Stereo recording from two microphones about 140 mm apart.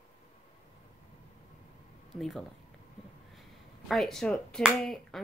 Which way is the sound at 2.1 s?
Centre (ahead or behind).